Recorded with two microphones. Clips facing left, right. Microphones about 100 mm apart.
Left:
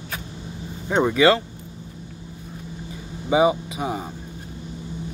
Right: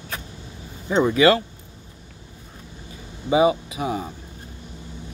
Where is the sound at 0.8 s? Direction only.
60° left (ahead or behind).